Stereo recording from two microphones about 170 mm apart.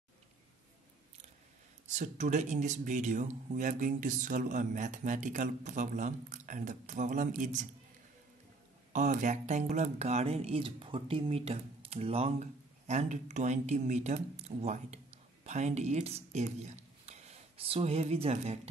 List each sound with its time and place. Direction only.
1.9 s speech: 45° right (ahead or behind)
8.9 s speech: 45° right (ahead or behind)